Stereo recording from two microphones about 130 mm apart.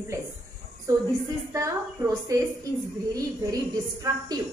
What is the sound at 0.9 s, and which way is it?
Speech, 25° right (ahead or behind).